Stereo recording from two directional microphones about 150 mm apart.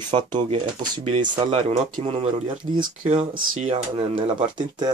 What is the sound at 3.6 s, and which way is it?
Speech, 45° right (ahead or behind).